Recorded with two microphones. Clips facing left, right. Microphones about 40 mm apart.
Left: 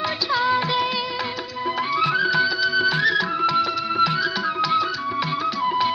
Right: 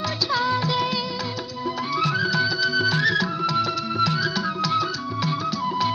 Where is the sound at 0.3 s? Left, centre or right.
Centre.